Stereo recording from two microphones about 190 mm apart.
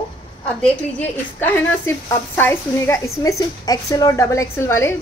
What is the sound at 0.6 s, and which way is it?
A woman's voice, 10° left (ahead or behind).